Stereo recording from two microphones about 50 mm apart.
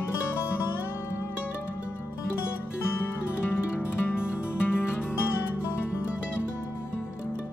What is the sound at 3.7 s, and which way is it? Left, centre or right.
Music, left.